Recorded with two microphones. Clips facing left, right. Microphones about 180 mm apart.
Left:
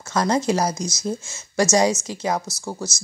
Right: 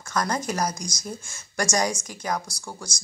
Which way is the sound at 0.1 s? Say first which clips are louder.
Left 7 dB; 25° left (ahead or behind).